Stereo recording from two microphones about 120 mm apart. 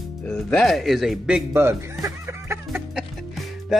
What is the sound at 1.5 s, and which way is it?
Music, 20° right (ahead or behind).